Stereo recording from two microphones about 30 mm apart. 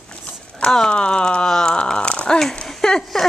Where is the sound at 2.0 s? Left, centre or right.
Left.